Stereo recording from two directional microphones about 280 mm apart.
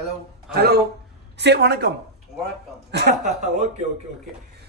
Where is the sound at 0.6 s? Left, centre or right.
Right.